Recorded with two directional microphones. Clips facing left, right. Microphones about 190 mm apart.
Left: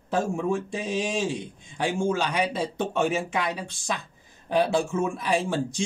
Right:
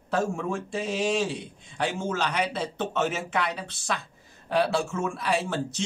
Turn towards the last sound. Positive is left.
turn(degrees=15)  # may be behind; listen again after turning